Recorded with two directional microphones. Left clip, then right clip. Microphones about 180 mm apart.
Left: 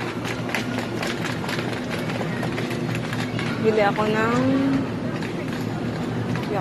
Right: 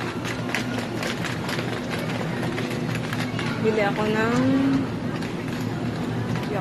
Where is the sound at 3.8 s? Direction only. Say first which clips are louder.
Left 2 dB; 20° right (ahead or behind).